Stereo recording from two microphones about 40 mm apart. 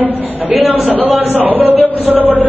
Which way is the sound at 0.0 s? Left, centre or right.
Right.